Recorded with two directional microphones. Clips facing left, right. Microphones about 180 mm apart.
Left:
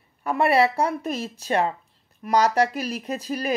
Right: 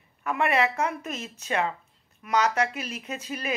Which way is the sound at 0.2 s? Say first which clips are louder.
Left 5 dB; 35° left (ahead or behind).